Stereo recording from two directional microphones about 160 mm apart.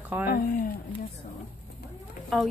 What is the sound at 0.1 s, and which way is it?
Speech, 10° right (ahead or behind).